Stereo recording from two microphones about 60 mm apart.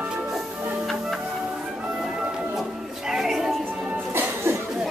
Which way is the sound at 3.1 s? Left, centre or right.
Centre.